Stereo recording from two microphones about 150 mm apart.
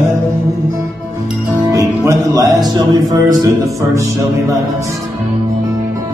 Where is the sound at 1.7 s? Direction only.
20° right (ahead or behind).